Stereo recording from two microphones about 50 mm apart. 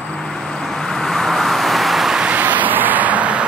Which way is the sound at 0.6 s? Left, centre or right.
Centre.